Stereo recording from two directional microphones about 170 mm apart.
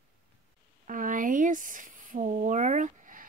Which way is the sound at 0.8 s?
50° right (ahead or behind).